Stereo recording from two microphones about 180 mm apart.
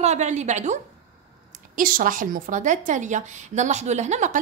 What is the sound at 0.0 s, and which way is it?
Speech, 40° right (ahead or behind).